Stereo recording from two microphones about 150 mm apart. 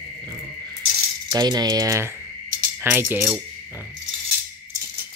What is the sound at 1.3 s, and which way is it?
Speech, 25° right (ahead or behind).